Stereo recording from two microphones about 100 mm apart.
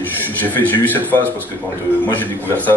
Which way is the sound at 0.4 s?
20° left (ahead or behind).